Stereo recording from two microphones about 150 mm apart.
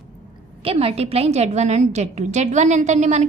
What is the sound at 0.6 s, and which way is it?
A woman's voice, 40° right (ahead or behind).